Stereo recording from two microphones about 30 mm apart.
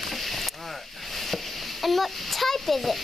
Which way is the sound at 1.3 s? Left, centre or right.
Centre.